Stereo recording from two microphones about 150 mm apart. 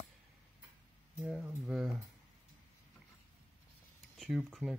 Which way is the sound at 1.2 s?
10° right (ahead or behind).